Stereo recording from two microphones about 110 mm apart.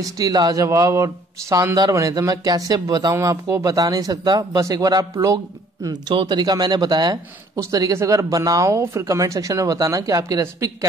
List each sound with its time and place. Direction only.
0.0 s a man's voice: 35° right (ahead or behind)
7.5 s a man's voice: 30° right (ahead or behind)